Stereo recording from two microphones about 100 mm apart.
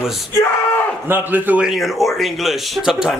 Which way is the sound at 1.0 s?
20° right (ahead or behind).